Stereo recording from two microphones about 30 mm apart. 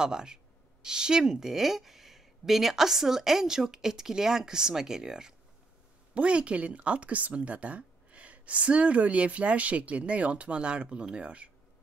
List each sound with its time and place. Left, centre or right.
0.0 s speech: right
6.1 s speech: right